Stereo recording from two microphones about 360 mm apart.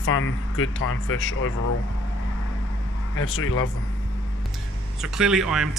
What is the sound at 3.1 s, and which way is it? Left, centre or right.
Speech, left.